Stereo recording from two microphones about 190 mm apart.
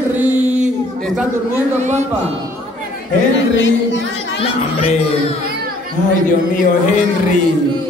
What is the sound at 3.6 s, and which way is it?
Singing, 70° left (ahead or behind).